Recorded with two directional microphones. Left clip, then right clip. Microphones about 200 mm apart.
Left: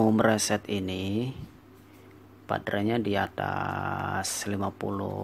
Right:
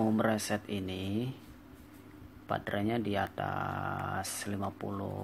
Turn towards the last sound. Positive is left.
turn(degrees=15)  # may be behind; listen again after turning